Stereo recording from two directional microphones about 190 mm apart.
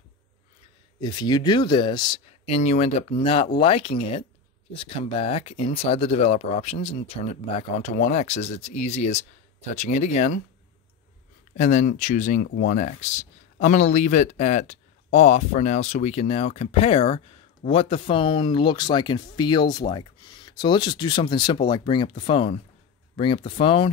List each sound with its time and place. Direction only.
1.0 s speech: 20° left (ahead or behind); by 10.4 s 40° left (ahead or behind)
11.5 s speech: 35° left (ahead or behind)